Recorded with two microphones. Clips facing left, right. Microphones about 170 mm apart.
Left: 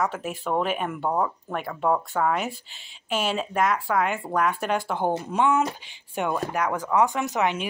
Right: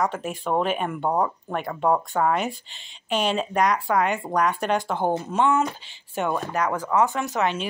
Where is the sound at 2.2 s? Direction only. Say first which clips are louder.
Right 2 dB; 5° left (ahead or behind).